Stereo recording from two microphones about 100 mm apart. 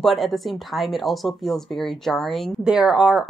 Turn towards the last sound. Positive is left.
turn(degrees=-5)  # may be behind; listen again after turning